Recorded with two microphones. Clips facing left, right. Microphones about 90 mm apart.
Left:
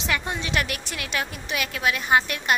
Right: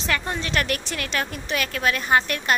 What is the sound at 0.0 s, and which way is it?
A woman's voice, 15° left (ahead or behind).